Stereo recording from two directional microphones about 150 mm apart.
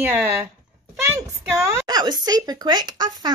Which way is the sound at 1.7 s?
25° right (ahead or behind).